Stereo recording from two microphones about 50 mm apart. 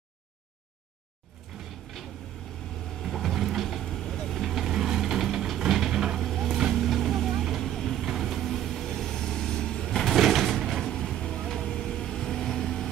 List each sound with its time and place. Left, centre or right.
1.5 s a sound: centre
3.0 s vehicle: centre
6.2 s vehicle: centre
6.5 s vehicle: centre
8.0 s vehicle: centre
10.1 s a sound: centre
10.9 s vehicle: centre